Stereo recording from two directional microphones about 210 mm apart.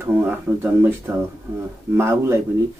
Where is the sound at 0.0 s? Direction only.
10° right (ahead or behind).